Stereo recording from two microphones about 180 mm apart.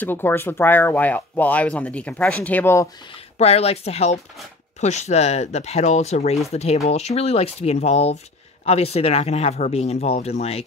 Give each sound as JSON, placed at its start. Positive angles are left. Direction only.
{"t": 0.0, "sound": "speech", "side_deg": 10}
{"t": 3.3, "sound": "speech", "side_deg": 35}